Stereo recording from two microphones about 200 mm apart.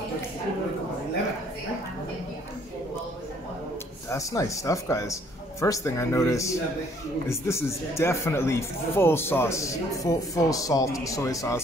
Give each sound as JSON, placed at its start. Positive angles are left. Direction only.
{"t": 4.1, "sound": "speech", "side_deg": 15}